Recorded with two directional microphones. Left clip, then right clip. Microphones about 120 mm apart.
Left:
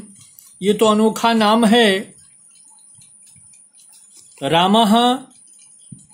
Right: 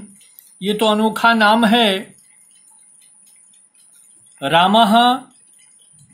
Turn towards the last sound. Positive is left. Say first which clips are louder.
# right 2 dB
turn(degrees=50)  # may be behind; listen again after turning